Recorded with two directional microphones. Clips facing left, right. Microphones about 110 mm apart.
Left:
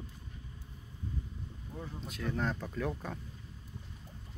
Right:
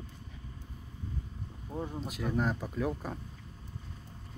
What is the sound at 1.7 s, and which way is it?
Speech, 30° right (ahead or behind).